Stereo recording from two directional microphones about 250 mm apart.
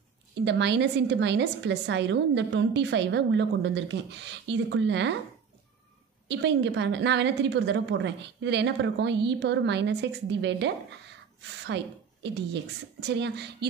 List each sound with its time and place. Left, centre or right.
0.5 s a woman's voice: right
6.2 s a woman's voice: right